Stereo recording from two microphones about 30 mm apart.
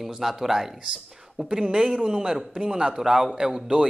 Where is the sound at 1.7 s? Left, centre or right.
Centre.